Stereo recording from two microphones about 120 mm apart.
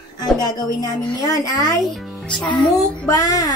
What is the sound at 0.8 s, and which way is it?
Speech, 30° left (ahead or behind).